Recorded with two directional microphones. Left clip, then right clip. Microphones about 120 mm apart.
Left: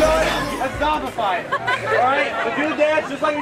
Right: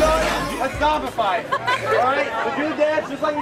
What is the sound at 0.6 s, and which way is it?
Music, 35° right (ahead or behind).